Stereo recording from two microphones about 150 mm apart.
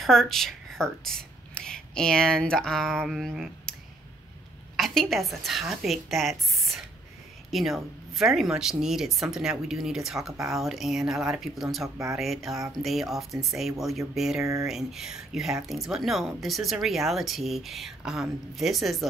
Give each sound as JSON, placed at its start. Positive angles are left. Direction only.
{"t": 0.0, "sound": "a woman's voice", "side_deg": 0}
{"t": 4.7, "sound": "speech", "side_deg": 0}
{"t": 14.4, "sound": "speech", "side_deg": -20}
{"t": 14.7, "sound": "speech", "side_deg": -5}